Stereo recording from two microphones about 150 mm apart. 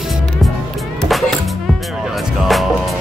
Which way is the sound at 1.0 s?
Centre (ahead or behind).